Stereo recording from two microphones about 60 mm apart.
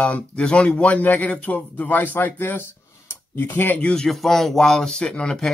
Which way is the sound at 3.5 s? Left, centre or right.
Left.